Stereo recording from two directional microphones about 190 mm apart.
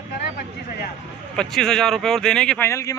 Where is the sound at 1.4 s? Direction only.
5° left (ahead or behind).